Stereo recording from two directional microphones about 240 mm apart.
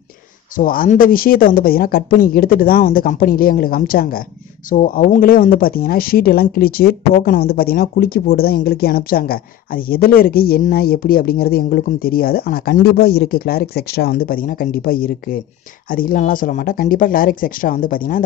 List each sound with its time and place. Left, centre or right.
0.6 s speech: left